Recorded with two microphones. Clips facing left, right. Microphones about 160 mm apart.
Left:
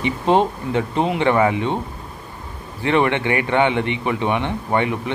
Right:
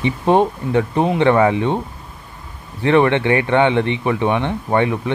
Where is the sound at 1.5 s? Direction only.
15° right (ahead or behind).